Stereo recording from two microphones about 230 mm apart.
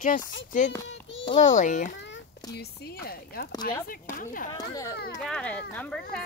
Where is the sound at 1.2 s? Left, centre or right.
Left.